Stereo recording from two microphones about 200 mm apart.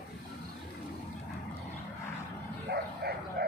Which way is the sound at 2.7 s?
50° right (ahead or behind).